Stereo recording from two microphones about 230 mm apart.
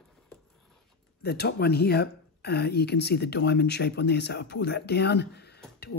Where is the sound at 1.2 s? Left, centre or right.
Left.